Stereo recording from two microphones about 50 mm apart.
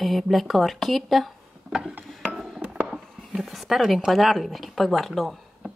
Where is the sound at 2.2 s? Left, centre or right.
Centre.